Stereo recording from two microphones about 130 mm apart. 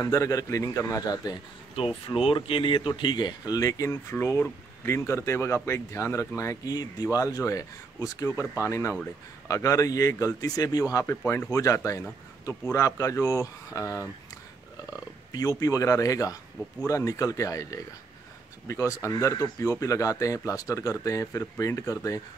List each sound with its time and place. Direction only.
0.0 s speech: 25° left (ahead or behind)
1.8 s speech: 45° left (ahead or behind); by 22.2 s 25° left (ahead or behind)